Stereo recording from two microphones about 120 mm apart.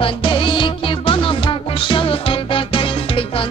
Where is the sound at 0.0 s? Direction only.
45° left (ahead or behind).